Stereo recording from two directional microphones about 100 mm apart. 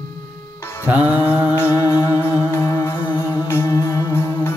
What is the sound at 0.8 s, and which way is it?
Music, 15° right (ahead or behind).